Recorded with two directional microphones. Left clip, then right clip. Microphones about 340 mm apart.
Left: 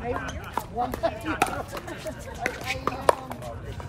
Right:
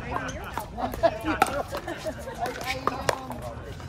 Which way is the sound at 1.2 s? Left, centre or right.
Centre.